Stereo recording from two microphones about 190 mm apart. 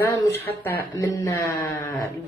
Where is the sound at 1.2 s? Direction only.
15° left (ahead or behind).